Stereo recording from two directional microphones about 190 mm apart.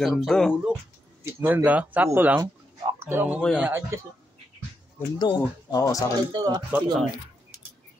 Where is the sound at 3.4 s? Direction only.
Centre (ahead or behind).